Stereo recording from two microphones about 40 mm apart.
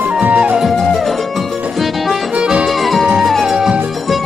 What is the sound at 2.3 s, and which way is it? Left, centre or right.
Music, right.